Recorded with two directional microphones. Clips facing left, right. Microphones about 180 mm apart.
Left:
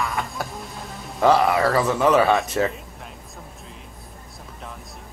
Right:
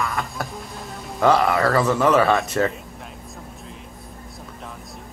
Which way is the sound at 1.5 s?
20° left (ahead or behind).